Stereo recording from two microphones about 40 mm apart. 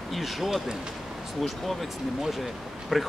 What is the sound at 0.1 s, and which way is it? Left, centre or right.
Speech, centre.